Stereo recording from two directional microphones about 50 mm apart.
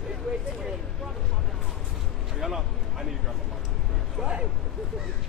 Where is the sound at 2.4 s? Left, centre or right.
Centre.